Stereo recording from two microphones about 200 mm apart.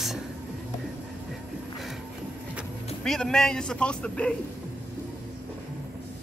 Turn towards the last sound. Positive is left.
turn(degrees=5)  # may be behind; listen again after turning